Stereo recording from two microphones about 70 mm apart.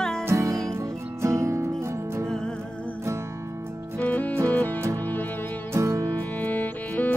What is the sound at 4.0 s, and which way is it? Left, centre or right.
Music, left.